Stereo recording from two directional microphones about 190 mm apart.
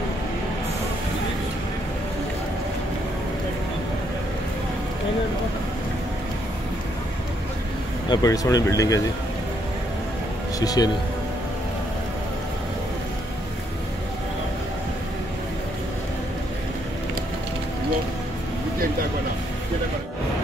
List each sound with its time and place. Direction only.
8.1 s speech: 20° left (ahead or behind)
10.6 s speech: 20° left (ahead or behind)